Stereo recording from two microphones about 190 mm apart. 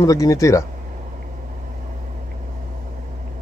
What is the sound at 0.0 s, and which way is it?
Speech, 20° left (ahead or behind).